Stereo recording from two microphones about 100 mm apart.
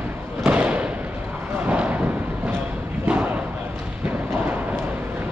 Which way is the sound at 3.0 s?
15° right (ahead or behind).